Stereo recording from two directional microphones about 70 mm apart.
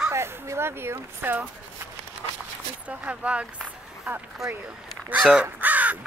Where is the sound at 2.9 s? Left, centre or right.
Centre.